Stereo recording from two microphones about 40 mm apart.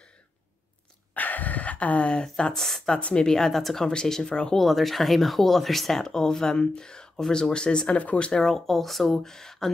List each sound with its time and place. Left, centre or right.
1.1 s dog: left
2.5 s speech: centre
3.0 s speech: left
3.3 s speech: centre
4.6 s speech: centre; by 8.0 s left
8.4 s speech: centre